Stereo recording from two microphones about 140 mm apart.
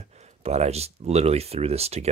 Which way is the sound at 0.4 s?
50° right (ahead or behind).